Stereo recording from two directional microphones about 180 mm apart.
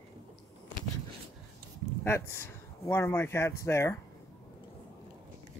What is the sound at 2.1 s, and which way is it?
Speech, 15° left (ahead or behind).